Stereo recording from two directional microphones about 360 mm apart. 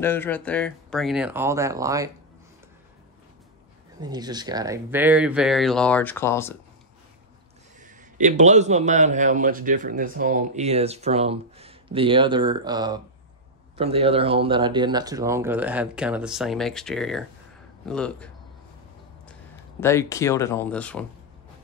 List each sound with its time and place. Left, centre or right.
0.0 s speech: centre
4.0 s speech: centre
7.8 s a man's voice: right; by 18.3 s centre
19.8 s speech: centre